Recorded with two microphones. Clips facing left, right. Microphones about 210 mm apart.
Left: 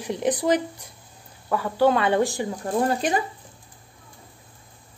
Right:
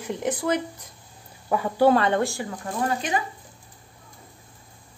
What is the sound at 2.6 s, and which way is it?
Speech, 35° left (ahead or behind).